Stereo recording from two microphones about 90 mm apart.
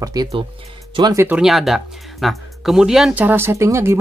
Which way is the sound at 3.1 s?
20° right (ahead or behind).